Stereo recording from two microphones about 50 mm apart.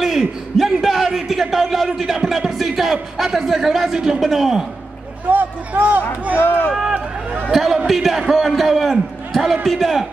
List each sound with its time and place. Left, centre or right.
0.0 s a man's voice: centre
5.3 s speech: right
6.3 s speech: left
7.5 s a man's voice: centre